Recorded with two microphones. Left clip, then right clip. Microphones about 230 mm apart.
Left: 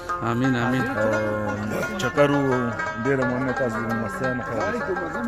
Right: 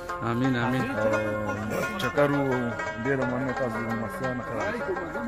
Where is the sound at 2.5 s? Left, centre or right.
Left.